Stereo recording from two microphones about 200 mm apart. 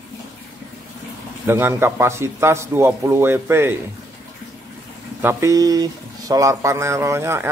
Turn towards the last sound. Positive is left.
turn(degrees=-15)  # may be behind; listen again after turning